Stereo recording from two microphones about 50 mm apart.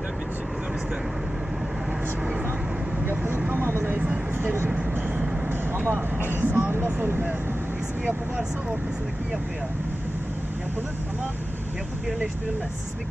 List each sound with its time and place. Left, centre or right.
3.8 s a sound: right
4.6 s vehicle: right
5.8 s speech: right